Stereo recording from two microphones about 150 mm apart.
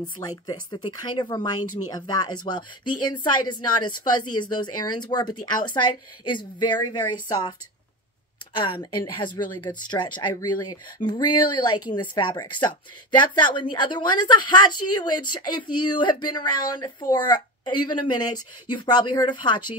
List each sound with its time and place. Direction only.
0.5 s speech: 30° left (ahead or behind)
8.5 s speech: 35° left (ahead or behind)